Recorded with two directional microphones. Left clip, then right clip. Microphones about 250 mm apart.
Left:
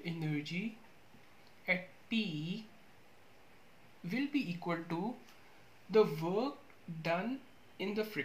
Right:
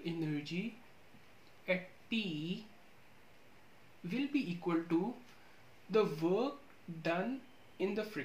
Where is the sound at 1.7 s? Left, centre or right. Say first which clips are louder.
Left 1 dB; left.